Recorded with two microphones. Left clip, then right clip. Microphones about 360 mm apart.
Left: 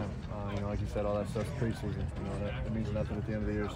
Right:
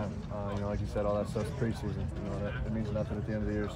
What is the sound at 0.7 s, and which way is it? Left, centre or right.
Speech, centre.